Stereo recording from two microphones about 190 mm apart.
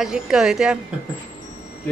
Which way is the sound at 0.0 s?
5° right (ahead or behind).